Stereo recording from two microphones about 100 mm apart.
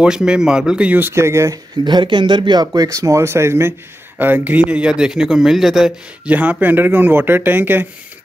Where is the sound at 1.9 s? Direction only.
50° right (ahead or behind); by 5.9 s centre (ahead or behind).